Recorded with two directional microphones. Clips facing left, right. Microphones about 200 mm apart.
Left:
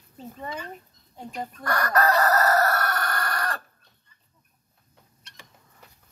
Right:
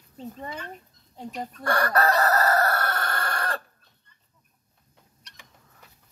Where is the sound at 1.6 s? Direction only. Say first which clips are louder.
Even; 30° right (ahead or behind).